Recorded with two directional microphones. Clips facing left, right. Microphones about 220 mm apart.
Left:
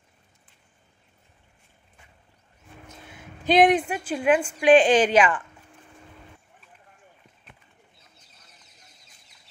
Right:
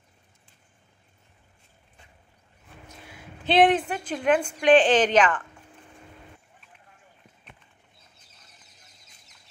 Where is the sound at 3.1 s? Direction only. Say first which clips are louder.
Left 3 dB; 20° left (ahead or behind).